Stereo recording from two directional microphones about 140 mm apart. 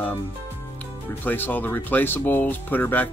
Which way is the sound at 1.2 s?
15° left (ahead or behind).